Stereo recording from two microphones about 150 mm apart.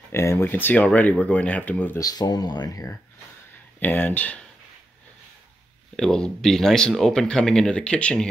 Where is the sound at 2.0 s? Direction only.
25° left (ahead or behind).